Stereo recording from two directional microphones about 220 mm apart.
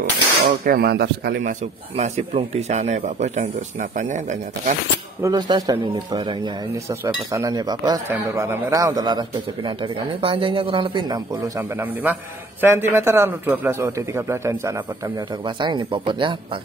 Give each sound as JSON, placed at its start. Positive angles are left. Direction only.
{"t": 0.5, "sound": "speech", "side_deg": -45}
{"t": 2.0, "sound": "speech", "side_deg": -30}
{"t": 5.2, "sound": "speech", "side_deg": -20}
{"t": 10.2, "sound": "a man's voice", "side_deg": -25}